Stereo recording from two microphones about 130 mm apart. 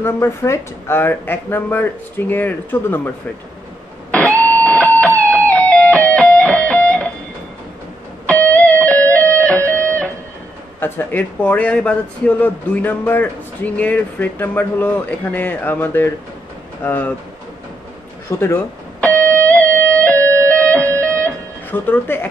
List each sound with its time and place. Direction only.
0.0 s speech: 20° left (ahead or behind)
4.4 s music: 10° left (ahead or behind)
8.3 s music: 10° left (ahead or behind)
10.8 s speech: 15° left (ahead or behind)
18.4 s speech: 15° left (ahead or behind)
19.1 s music: 20° right (ahead or behind)
19.4 s music: 10° left (ahead or behind)
21.2 s guitar: 15° left (ahead or behind)